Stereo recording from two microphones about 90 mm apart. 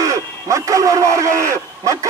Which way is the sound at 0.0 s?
35° right (ahead or behind).